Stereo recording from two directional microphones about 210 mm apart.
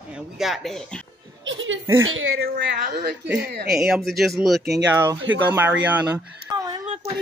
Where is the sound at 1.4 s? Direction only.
65° right (ahead or behind).